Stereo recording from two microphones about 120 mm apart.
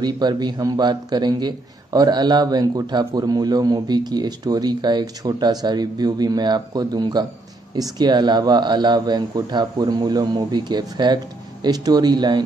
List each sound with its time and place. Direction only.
0.0 s a man's voice: 35° right (ahead or behind)